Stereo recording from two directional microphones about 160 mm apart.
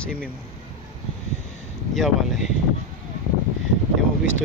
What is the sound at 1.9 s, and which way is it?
Speech, centre (ahead or behind).